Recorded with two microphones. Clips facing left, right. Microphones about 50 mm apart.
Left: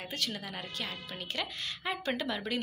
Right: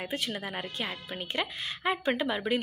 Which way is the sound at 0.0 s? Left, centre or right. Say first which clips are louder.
Right 4 dB; centre.